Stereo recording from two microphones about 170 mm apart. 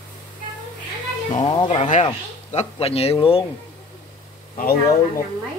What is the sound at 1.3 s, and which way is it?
A man's voice, 30° left (ahead or behind).